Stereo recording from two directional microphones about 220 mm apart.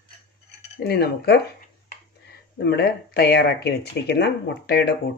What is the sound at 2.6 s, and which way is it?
Speech, 45° left (ahead or behind).